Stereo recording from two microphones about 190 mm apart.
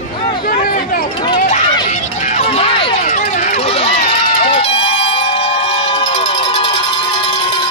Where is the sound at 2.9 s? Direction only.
40° left (ahead or behind).